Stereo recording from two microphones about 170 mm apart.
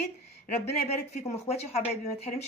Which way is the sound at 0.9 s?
40° left (ahead or behind).